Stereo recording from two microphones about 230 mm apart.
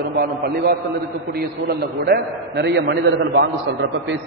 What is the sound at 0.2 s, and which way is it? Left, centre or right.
A man's voice, right.